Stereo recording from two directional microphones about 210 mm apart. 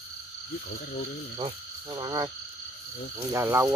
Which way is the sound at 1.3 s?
20° right (ahead or behind).